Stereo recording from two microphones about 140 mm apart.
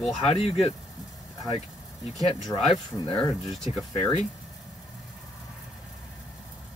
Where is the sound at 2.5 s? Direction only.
30° left (ahead or behind).